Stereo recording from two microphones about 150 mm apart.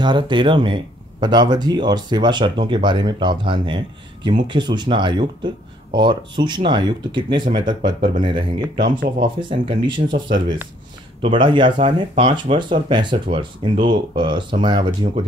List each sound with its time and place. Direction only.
0.0 s speech: 30° right (ahead or behind)
11.2 s speech: 35° right (ahead or behind)